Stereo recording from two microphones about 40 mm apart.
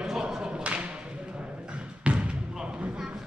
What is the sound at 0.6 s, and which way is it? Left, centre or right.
Thump, right.